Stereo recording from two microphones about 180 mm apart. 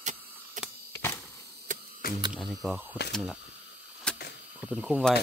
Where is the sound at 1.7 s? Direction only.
45° right (ahead or behind).